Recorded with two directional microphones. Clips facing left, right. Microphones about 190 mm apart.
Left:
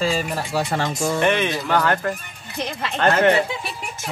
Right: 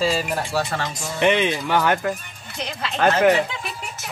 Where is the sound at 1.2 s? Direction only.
15° right (ahead or behind).